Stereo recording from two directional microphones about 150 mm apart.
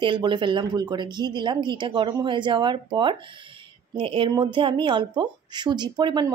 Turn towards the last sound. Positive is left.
turn(degrees=-30)  # may be behind; listen again after turning